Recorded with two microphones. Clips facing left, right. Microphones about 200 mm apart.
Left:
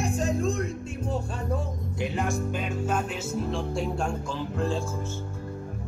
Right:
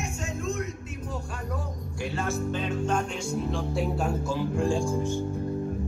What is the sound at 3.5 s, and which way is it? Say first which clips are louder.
Music: even; centre (ahead or behind).